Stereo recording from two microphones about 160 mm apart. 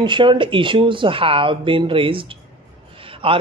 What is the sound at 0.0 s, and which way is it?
Speech, 30° right (ahead or behind).